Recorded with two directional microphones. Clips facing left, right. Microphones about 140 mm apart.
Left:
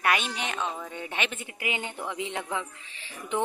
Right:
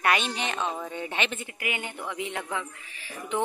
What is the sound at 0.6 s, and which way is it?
Speech, 15° right (ahead or behind).